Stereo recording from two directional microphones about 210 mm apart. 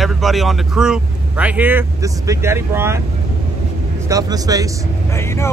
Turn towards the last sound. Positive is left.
turn(degrees=15)  # may be behind; listen again after turning